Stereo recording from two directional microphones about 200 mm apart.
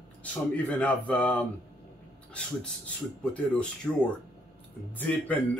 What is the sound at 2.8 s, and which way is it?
Speech, 5° left (ahead or behind).